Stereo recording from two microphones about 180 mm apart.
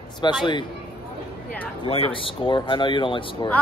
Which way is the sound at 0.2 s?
25° left (ahead or behind).